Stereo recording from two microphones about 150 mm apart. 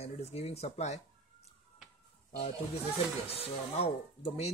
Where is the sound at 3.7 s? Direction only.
45° left (ahead or behind).